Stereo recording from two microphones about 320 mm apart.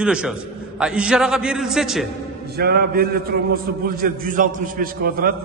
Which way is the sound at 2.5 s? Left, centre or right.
Right.